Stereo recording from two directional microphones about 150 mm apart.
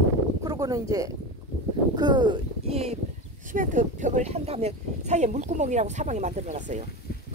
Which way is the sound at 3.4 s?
60° right (ahead or behind).